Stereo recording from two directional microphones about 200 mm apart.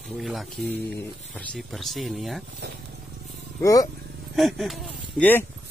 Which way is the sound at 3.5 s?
15° left (ahead or behind).